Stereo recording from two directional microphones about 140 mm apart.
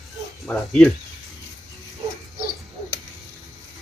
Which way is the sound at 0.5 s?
5° left (ahead or behind).